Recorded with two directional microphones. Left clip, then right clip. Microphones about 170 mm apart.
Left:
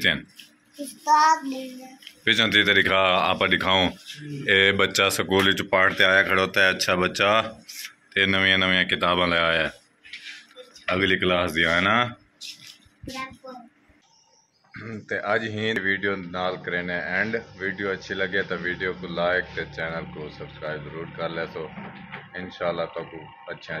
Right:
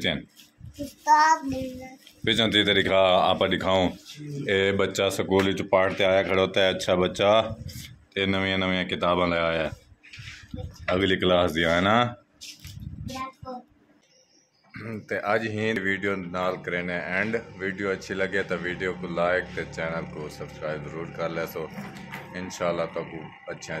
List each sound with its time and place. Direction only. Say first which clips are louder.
1.0 s speech: left 1 dB; 5° right (ahead or behind)
2.2 s speech: left 3 dB; 15° right (ahead or behind)
10.3 s speech: even; 15° right (ahead or behind)
14.7 s speech: left 1 dB; 10° right (ahead or behind)